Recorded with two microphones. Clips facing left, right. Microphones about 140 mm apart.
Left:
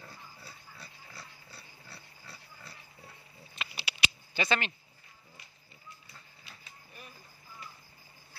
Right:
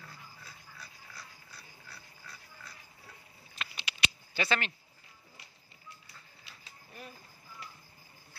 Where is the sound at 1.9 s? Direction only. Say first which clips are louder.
Left 1 dB; 30° left (ahead or behind).